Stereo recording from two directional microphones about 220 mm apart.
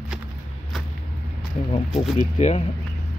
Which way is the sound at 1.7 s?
25° left (ahead or behind).